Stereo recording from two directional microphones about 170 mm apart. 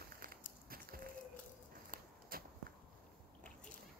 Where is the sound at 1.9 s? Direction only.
60° right (ahead or behind).